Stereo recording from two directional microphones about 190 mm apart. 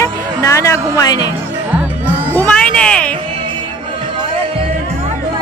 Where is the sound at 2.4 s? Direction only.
5° left (ahead or behind).